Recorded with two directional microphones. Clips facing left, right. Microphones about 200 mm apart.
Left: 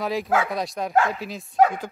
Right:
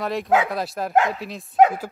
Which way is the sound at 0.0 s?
Centre (ahead or behind).